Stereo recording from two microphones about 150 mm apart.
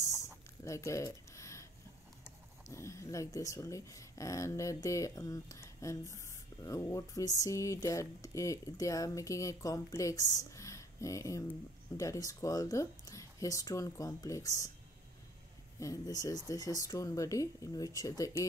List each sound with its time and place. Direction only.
0.7 s a sound: 20° left (ahead or behind)
2.7 s speech: 20° left (ahead or behind)
15.8 s speech: 25° left (ahead or behind)